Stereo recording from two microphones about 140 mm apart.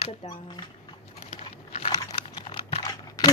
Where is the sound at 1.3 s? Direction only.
45° left (ahead or behind).